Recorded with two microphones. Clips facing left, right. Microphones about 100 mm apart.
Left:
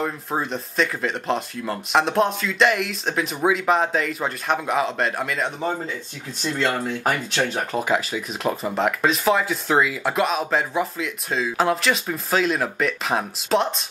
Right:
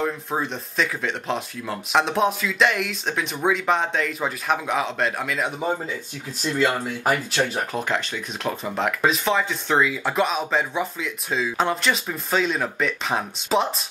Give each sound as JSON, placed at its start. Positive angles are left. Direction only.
{"t": 0.0, "sound": "speech", "side_deg": 0}